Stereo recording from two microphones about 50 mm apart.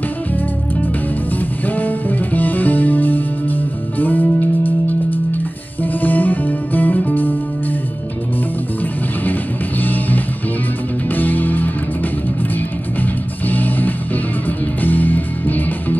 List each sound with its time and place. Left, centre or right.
1.8 s music: left
9.8 s music: left
13.5 s music: left